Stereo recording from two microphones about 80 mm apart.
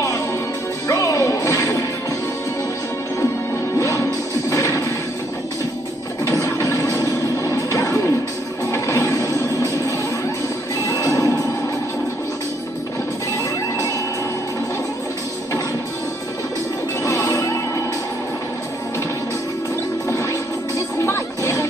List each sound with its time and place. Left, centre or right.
0.8 s music: left
3.7 s music: left
6.2 s music: left
10.9 s music: left
17.0 s music: left
21.0 s music: left